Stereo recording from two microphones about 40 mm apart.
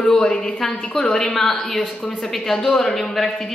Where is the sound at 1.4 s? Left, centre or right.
Centre.